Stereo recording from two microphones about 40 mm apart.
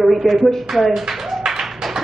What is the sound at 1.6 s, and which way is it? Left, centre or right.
Clapping, centre.